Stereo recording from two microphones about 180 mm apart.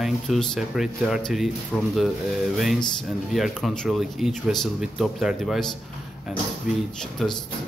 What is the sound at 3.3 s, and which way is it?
A man's voice, centre (ahead or behind).